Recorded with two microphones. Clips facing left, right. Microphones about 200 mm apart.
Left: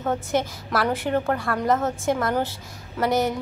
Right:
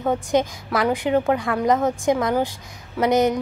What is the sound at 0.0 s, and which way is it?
A woman's voice, 15° right (ahead or behind).